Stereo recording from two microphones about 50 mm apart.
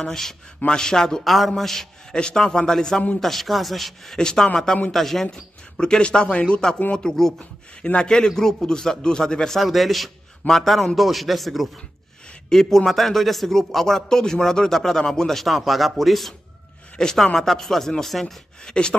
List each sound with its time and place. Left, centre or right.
0.0 s speech: centre
1.2 s speech: centre
7.8 s a man's voice: left
8.1 s speech: centre
9.6 s speech: centre
16.9 s speech: centre